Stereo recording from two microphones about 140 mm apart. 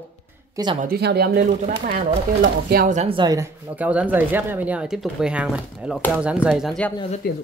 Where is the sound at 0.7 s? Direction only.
90° right.